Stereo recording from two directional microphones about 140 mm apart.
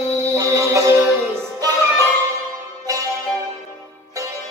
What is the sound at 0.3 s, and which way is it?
Music, 20° right (ahead or behind).